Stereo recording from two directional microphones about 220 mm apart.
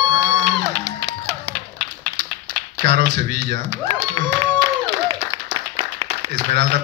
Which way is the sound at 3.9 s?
20° right (ahead or behind).